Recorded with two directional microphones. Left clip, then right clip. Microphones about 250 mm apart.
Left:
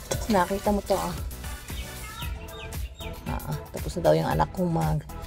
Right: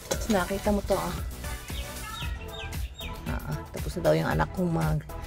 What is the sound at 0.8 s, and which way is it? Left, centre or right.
Speech, centre.